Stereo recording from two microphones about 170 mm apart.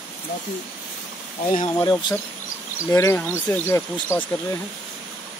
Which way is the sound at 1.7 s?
25° left (ahead or behind).